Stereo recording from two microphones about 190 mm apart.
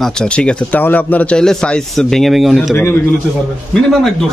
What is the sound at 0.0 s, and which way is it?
A man's voice, 5° left (ahead or behind).